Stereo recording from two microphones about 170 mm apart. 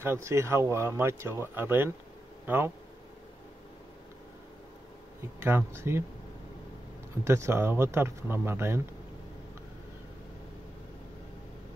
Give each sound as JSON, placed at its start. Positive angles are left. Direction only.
{"t": 0.0, "sound": "speech", "side_deg": -15}
{"t": 5.4, "sound": "speech", "side_deg": -10}
{"t": 7.2, "sound": "speech", "side_deg": -15}